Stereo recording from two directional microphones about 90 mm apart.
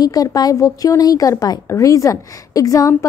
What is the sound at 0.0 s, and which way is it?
A woman's voice, 45° left (ahead or behind).